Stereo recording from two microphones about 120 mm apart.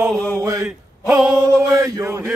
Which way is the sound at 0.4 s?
30° right (ahead or behind).